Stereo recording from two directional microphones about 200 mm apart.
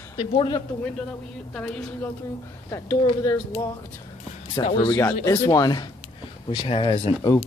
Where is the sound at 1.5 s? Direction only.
5° left (ahead or behind).